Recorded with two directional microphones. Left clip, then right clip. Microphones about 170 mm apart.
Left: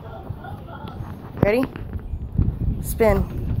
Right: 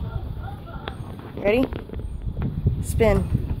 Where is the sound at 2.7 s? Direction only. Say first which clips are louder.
Left 2 dB; 5° right (ahead or behind).